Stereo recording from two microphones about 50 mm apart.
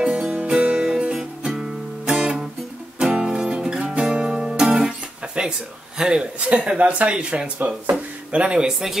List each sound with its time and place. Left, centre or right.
0.0 s music: right
5.9 s speech: centre